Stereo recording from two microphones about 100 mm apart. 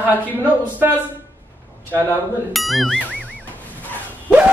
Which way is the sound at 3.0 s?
15° left (ahead or behind).